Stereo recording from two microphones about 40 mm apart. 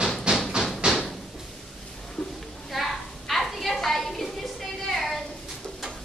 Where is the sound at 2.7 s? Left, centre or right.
Centre.